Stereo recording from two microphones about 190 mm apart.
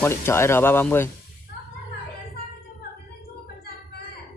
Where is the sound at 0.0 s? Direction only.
15° left (ahead or behind).